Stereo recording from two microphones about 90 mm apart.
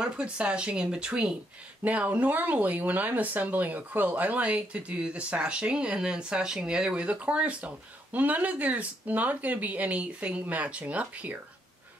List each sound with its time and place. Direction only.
0.0 s speech: 10° right (ahead or behind)